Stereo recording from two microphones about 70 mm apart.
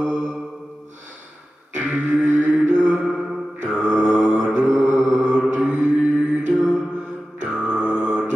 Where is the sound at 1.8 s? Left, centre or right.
Centre.